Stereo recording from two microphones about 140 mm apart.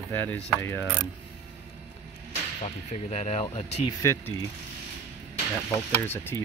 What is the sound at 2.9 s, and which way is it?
Speech, 55° left (ahead or behind).